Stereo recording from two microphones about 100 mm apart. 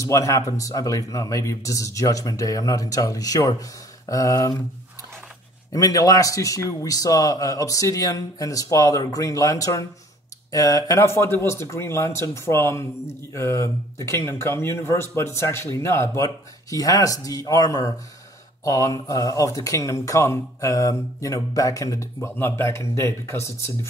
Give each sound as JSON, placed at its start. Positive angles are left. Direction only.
{"t": 0.0, "sound": "speech", "side_deg": 35}
{"t": 5.7, "sound": "speech", "side_deg": 35}